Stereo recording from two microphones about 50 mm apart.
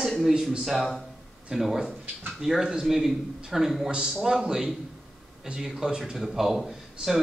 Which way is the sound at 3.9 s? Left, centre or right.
Centre.